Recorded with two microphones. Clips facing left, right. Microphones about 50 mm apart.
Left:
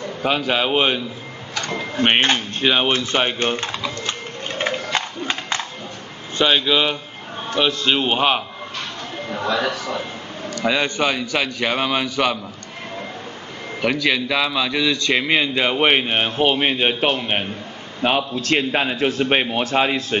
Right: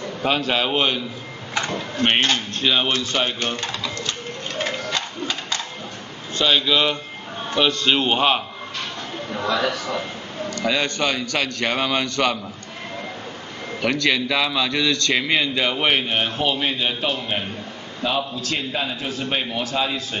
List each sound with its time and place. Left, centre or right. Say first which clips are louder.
0.2 s a man's voice: left 1 dB; centre; by 4.1 s left
4.6 s a sound: left 3 dB; left
6.3 s a man's voice: left 2 dB; centre
9.5 s a man's voice: even; centre
13.7 s a man's voice: left 1 dB; centre; by 20.2 s left